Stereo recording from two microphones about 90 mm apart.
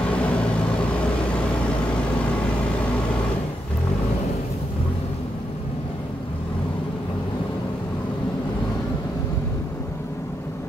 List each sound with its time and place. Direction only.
0.1 s vehicle: 15° left (ahead or behind)